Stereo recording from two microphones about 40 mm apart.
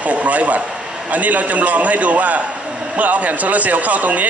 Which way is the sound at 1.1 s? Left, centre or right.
Right.